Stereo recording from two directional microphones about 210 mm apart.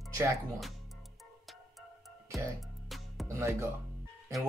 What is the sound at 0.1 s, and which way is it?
Music, 15° right (ahead or behind).